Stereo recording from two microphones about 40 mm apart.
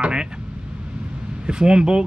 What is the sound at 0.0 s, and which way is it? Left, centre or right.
Vehicle, right.